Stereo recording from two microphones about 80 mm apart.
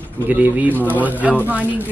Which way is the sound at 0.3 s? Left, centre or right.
Right.